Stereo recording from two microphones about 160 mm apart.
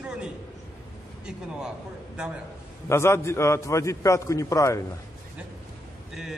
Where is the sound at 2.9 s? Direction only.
15° left (ahead or behind).